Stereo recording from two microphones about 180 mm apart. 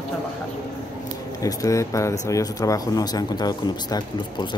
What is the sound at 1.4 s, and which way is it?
Speech, 20° left (ahead or behind).